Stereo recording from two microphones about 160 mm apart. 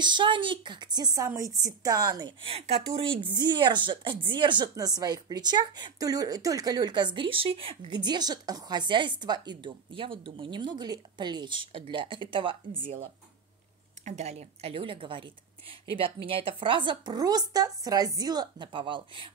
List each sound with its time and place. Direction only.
0.0 s a woman's voice: 30° right (ahead or behind)